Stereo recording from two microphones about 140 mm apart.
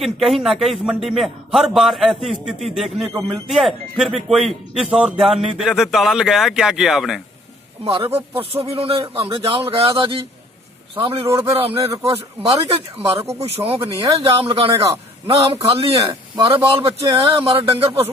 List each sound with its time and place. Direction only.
0.0 s speech: centre (ahead or behind)
7.8 s a man's voice: 45° right (ahead or behind)
11.0 s a man's voice: 40° right (ahead or behind)